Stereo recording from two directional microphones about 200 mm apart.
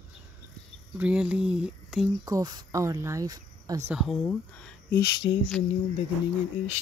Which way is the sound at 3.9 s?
Centre (ahead or behind).